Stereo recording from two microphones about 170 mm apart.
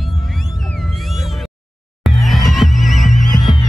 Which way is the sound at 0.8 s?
Centre (ahead or behind).